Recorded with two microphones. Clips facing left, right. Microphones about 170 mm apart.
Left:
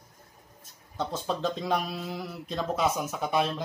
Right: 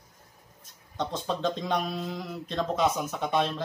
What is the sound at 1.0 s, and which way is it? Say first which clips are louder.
Speech: even; 5° left (ahead or behind).